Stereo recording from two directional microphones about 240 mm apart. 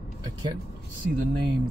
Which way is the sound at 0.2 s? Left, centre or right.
Centre.